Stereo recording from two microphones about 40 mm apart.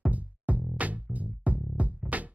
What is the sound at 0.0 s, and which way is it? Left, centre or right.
Music, right.